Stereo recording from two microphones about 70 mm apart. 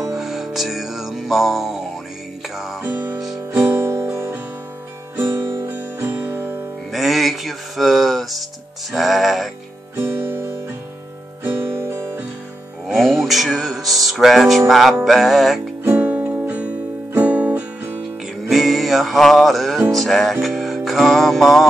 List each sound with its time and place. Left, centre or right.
0.1 s music: centre
2.8 s music: right
5.1 s music: right
6.9 s music: centre
9.9 s music: right
11.4 s guitar: right
12.8 s music: centre
15.8 s music: right
18.5 s music: centre